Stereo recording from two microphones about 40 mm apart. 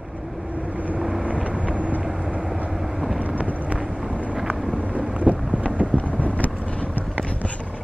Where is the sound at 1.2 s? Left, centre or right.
Right.